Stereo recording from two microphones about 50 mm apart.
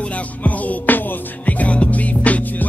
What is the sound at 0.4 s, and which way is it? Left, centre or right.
Music, left.